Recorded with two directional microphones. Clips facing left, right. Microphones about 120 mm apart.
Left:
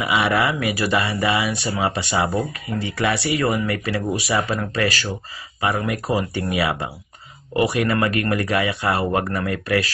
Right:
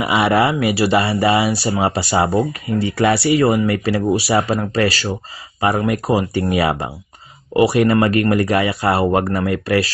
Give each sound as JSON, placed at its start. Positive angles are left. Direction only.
{"t": 0.0, "sound": "speech", "side_deg": -30}